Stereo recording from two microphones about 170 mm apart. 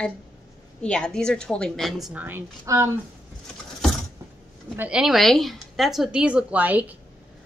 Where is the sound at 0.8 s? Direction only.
5° left (ahead or behind).